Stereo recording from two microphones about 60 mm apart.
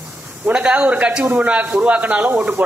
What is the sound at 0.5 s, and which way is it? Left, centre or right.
A man's voice, right.